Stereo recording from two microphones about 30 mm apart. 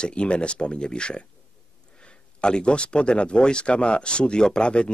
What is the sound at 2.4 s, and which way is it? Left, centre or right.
Speech, left.